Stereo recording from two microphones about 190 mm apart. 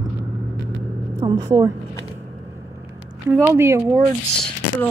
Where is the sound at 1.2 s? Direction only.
25° right (ahead or behind).